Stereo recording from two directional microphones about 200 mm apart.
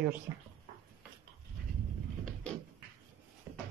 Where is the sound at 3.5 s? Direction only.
10° right (ahead or behind).